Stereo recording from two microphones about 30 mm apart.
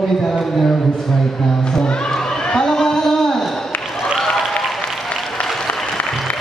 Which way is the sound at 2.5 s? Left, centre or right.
Centre.